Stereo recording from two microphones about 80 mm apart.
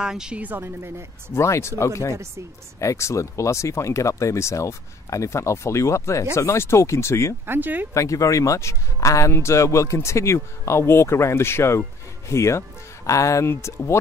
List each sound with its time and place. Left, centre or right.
0.0 s speech: centre
0.4 s a woman's voice: right
1.3 s speech: left
7.4 s a woman's voice: right
7.9 s speech: left